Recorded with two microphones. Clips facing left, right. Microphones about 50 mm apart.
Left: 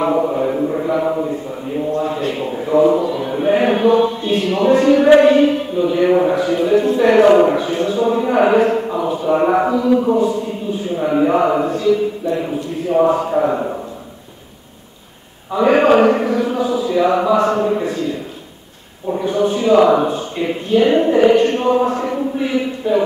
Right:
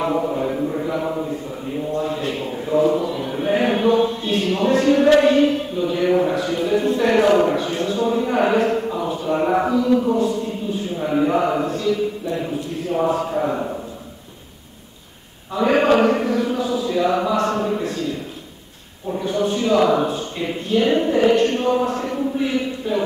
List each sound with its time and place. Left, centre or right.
0.0 s mantra: centre
2.0 s a sound: centre
2.7 s speech: centre
4.0 s a sound: centre
5.1 s speech: centre
15.5 s speech: centre